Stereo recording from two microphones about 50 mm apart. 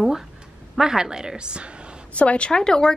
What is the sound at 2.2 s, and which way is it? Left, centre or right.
Speech, left.